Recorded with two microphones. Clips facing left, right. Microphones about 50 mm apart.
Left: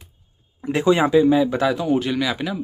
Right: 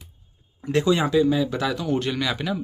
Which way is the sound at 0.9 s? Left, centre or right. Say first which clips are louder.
Left 6 dB; left.